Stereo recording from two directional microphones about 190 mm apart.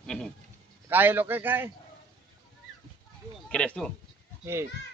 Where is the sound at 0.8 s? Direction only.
10° right (ahead or behind).